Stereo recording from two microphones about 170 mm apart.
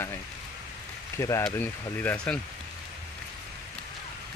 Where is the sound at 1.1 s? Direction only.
15° left (ahead or behind).